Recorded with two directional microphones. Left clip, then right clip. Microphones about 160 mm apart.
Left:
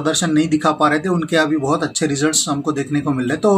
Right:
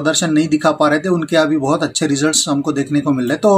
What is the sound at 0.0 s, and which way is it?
Speech, 20° right (ahead or behind).